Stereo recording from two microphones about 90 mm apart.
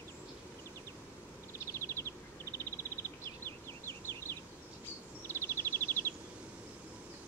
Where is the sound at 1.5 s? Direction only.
30° left (ahead or behind).